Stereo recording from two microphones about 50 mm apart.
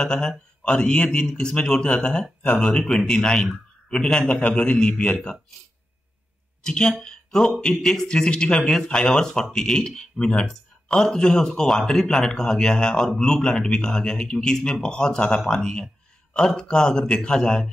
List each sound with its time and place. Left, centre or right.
0.0 s a man's voice: centre
6.6 s speech: centre